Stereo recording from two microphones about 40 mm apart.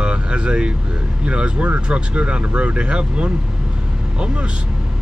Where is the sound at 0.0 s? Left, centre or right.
Right.